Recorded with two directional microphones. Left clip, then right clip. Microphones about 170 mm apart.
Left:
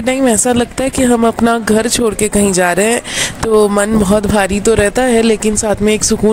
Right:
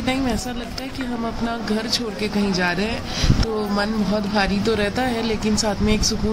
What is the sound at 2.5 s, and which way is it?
Speech, 90° left.